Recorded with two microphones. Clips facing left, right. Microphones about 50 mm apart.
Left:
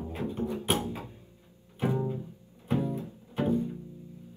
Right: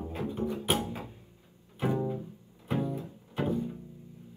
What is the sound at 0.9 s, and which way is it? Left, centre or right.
Music, right.